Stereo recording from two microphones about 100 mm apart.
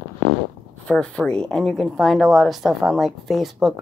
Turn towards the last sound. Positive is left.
turn(degrees=-5)  # may be behind; listen again after turning